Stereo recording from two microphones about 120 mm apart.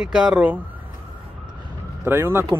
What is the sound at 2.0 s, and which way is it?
Speech, 20° right (ahead or behind).